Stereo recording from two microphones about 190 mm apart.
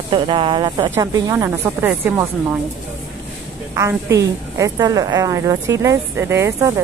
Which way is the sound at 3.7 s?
15° right (ahead or behind).